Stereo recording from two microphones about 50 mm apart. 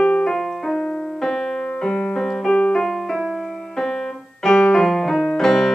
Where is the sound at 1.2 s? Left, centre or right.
Centre.